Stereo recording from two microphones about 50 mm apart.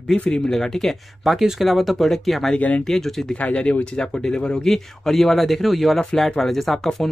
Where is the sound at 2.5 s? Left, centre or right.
Left.